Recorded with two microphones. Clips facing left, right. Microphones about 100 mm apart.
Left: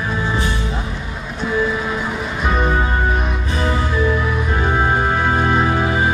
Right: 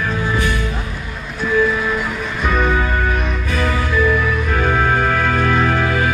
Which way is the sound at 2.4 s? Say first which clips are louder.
Right 1 dB; 25° left (ahead or behind).